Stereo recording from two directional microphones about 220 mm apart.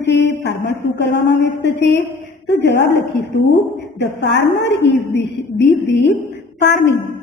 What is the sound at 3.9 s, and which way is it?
A man's voice, 50° left (ahead or behind).